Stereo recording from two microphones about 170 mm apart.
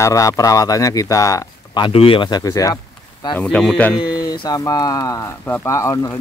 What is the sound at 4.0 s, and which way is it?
Speech, 25° left (ahead or behind).